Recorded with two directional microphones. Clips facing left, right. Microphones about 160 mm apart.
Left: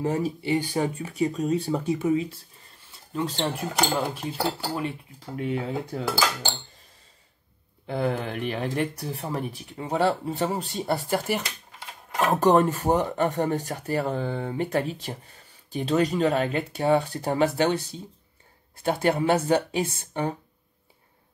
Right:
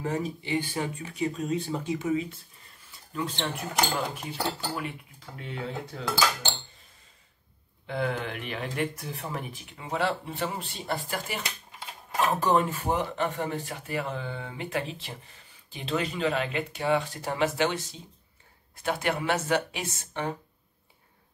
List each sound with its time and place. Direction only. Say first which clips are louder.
0.0 s speech: left 5 dB; 35° left (ahead or behind)
5.4 s speech: left 7 dB; 50° left (ahead or behind)
7.8 s speech: left 3 dB; 35° left (ahead or behind)